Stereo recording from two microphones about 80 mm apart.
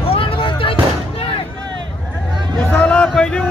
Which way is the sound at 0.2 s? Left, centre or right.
Left.